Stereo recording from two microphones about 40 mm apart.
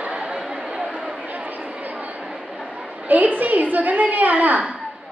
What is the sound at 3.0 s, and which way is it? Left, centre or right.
A woman's voice, right.